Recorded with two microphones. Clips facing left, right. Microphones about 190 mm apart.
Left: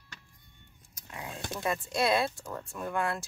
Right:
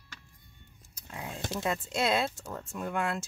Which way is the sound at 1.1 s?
25° right (ahead or behind).